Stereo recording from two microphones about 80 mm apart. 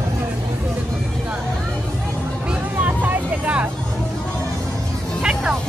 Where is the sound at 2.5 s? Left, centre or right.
Right.